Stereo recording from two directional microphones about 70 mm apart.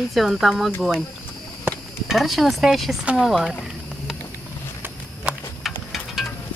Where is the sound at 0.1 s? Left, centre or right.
Centre.